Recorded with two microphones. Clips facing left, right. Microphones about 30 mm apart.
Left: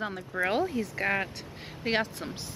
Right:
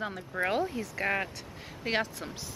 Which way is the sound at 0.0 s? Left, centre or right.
Centre.